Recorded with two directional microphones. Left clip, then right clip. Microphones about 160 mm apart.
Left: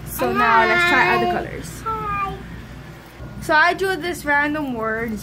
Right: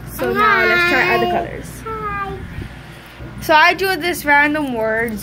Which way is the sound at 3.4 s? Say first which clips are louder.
Right 4 dB; 5° right (ahead or behind).